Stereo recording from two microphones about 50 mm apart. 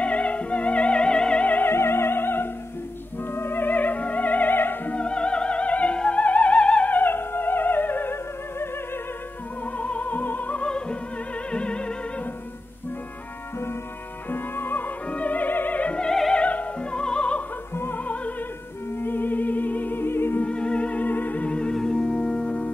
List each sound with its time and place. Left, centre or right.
0.0 s music: left
1.4 s music: left
1.7 s music: left
4.9 s music: left
6.9 s music: left
9.8 s music: left
10.6 s music: left
14.3 s music: left
15.0 s opera: left
16.1 s opera: centre
16.3 s music: left
17.9 s opera: left
18.9 s music: left
20.4 s music: left